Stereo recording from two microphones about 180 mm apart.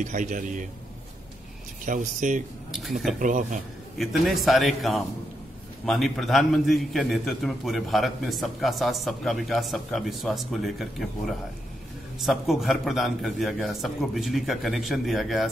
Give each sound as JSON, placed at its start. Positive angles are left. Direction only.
{"t": 0.0, "sound": "a man's voice", "side_deg": -45}
{"t": 1.9, "sound": "a man's voice", "side_deg": -45}
{"t": 2.7, "sound": "a man's voice", "side_deg": 0}
{"t": 3.2, "sound": "a man's voice", "side_deg": -45}
{"t": 4.0, "sound": "a man's voice", "side_deg": 0}